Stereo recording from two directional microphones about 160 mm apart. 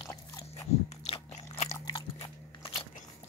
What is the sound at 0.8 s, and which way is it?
Biting, 40° left (ahead or behind).